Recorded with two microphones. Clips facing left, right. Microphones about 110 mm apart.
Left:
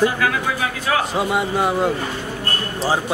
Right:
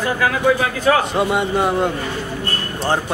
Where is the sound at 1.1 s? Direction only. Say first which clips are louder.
Right 2 dB; centre (ahead or behind).